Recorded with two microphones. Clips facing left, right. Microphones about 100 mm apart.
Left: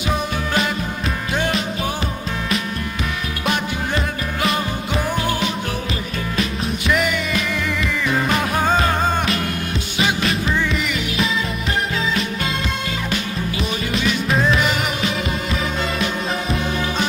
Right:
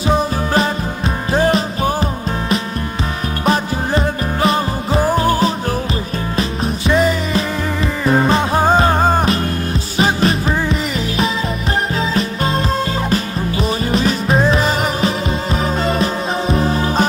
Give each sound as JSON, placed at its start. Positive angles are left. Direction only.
{"t": 0.1, "sound": "music", "side_deg": -35}
{"t": 3.4, "sound": "music", "side_deg": -35}